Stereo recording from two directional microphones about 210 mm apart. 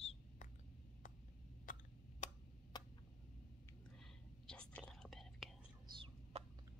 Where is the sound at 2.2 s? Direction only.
35° left (ahead or behind).